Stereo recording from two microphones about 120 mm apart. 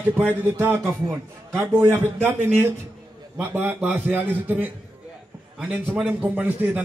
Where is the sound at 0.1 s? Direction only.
15° right (ahead or behind).